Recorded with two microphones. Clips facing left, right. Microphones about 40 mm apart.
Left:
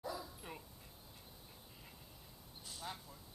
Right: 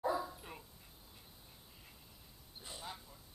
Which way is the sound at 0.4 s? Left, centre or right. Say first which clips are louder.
Left 1 dB; centre.